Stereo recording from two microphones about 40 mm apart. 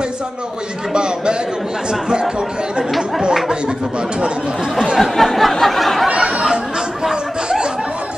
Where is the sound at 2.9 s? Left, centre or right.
Centre.